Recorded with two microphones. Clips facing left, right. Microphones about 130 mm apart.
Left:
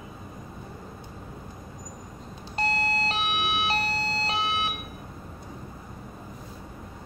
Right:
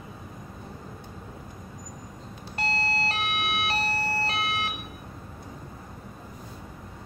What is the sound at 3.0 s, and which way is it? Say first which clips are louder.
Siren: left 1 dB; 20° left (ahead or behind).